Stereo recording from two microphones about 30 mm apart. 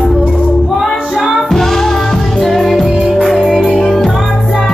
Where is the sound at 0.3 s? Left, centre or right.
Centre.